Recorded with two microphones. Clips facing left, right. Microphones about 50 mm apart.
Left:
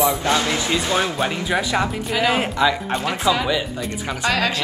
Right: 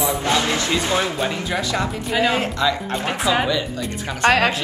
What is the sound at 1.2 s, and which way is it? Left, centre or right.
Speech, left.